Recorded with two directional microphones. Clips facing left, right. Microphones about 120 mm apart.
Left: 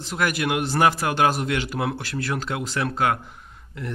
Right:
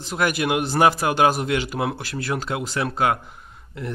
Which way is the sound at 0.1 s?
15° right (ahead or behind).